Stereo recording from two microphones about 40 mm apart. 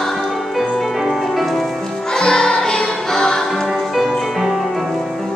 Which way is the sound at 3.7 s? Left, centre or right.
Centre.